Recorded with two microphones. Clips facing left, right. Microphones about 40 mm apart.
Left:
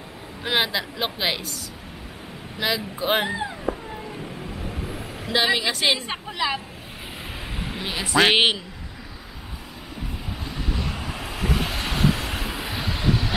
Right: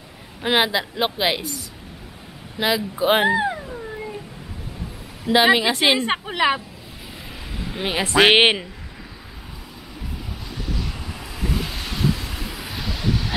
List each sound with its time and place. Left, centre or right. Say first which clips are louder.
0.4 s speech: right 4 dB; centre
2.6 s speech: right 5 dB; centre
3.3 s speech: right 9 dB; right
5.3 s a woman's voice: right 6 dB; centre
6.2 s a woman's voice: right 4 dB; right
7.8 s a woman's voice: right 3 dB; right
10.7 s vehicle: left 1 dB; left